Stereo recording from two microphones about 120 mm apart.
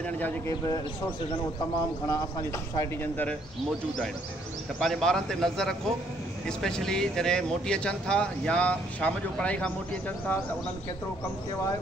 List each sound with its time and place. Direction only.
1.3 s a man's voice: 30° left (ahead or behind)
4.7 s speech: 5° left (ahead or behind)